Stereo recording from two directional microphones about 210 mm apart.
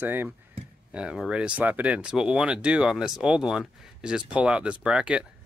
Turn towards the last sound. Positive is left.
turn(degrees=-5)  # may be behind; listen again after turning